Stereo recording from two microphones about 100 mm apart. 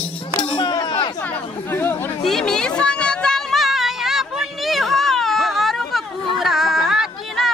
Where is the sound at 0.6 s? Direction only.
50° left (ahead or behind).